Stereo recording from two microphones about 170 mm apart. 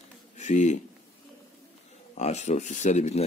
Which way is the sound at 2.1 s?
40° left (ahead or behind).